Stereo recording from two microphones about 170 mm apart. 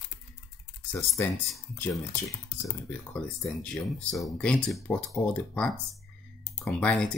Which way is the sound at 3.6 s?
5° left (ahead or behind).